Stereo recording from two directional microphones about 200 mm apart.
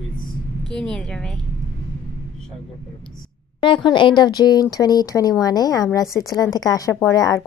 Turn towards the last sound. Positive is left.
turn(degrees=15)  # may be behind; listen again after turning